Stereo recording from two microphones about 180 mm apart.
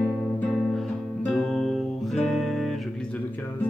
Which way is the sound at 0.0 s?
Centre (ahead or behind).